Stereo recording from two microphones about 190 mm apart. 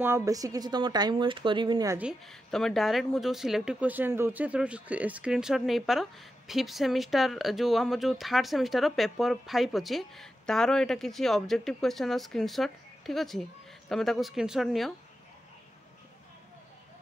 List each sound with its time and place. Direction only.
0.0 s speech: 15° right (ahead or behind)
2.0 s speech: centre (ahead or behind)